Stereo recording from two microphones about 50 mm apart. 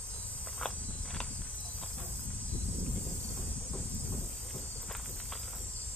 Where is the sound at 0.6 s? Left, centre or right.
Centre.